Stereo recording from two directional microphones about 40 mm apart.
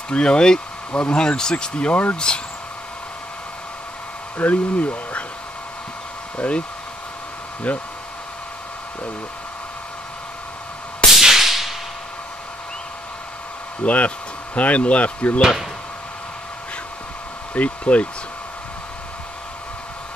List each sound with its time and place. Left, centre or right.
0.1 s speech: left
1.9 s speech: left
2.1 s speech: left
4.4 s speech: left
6.3 s speech: left
7.7 s speech: left
11.1 s whip: centre
13.8 s speech: left
17.6 s speech: left